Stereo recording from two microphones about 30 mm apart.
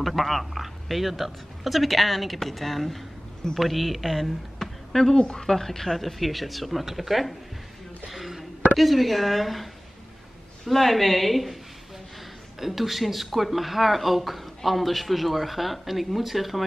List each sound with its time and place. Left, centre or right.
0.0 s speech: centre
4.6 s a sound: centre
5.1 s a woman's voice: left
5.5 s speech: centre
8.1 s a sound: centre
8.7 s speech: centre
10.7 s speech: centre
12.5 s speech: centre